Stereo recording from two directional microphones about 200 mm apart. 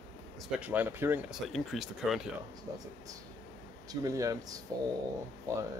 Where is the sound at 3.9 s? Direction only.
15° right (ahead or behind).